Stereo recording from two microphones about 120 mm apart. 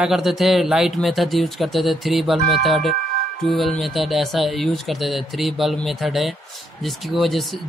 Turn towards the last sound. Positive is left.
turn(degrees=0)  # may be behind; listen again after turning